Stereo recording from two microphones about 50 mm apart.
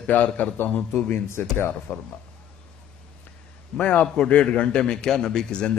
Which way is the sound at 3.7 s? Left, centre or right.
Left.